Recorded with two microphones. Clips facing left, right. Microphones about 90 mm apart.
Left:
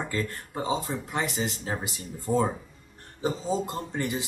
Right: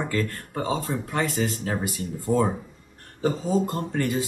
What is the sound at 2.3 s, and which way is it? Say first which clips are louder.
Speech: right 3 dB; centre (ahead or behind).